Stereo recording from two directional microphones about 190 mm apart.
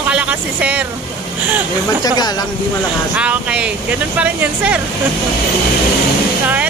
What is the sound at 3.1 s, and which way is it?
Speech, 5° right (ahead or behind).